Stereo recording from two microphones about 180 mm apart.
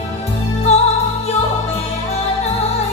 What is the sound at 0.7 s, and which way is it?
Music, 35° left (ahead or behind).